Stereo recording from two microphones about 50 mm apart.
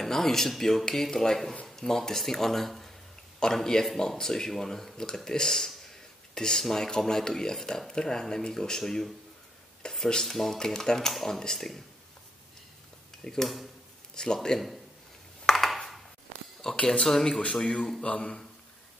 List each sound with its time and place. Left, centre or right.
0.0 s speech: centre
13.2 s speech: centre
15.4 s a sound: centre
16.7 s speech: left
17.0 s speech: centre
18.0 s speech: centre